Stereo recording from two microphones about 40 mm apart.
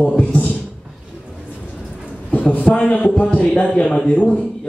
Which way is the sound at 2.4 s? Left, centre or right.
Left.